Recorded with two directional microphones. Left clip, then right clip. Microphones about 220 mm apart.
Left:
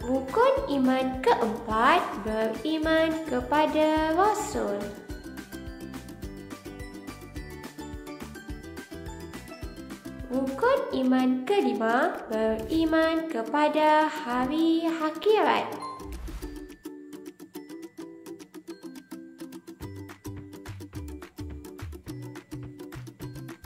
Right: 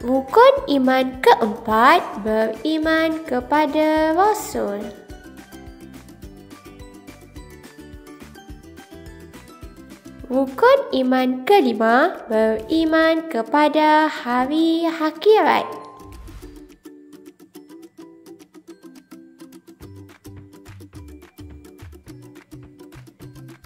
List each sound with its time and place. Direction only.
0.0 s a woman's voice: 30° right (ahead or behind)
10.3 s a woman's voice: 30° right (ahead or behind)